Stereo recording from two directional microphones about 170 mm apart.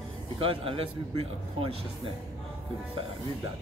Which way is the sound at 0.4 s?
30° right (ahead or behind).